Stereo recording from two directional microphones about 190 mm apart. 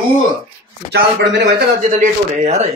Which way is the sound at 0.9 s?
60° right (ahead or behind).